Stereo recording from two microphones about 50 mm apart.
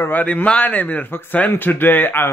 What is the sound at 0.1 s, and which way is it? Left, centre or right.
A man's voice, left.